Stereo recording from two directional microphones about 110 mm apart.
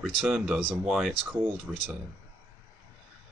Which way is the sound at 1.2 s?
15° right (ahead or behind).